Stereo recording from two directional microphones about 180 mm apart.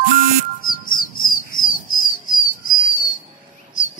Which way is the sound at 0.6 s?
50° left (ahead or behind).